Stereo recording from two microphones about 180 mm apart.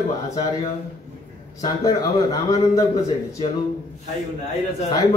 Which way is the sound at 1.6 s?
20° left (ahead or behind).